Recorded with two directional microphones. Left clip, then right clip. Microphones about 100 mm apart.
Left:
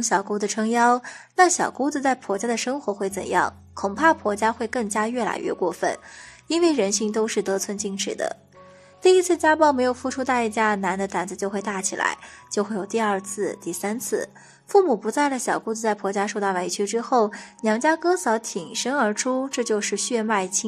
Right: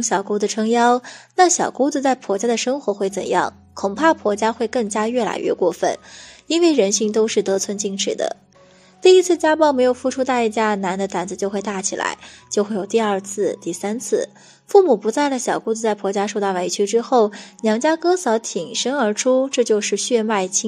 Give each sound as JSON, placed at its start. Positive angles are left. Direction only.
{"t": 0.0, "sound": "a woman's voice", "side_deg": -20}